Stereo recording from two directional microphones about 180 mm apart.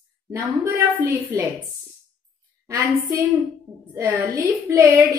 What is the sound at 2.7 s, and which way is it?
Speech, 15° right (ahead or behind).